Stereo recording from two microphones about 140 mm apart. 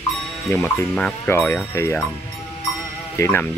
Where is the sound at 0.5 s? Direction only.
10° left (ahead or behind).